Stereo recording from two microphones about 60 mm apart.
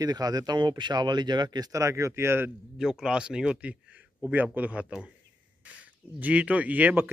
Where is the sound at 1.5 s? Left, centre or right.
Right.